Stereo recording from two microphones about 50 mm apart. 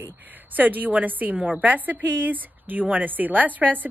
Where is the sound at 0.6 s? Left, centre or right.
Right.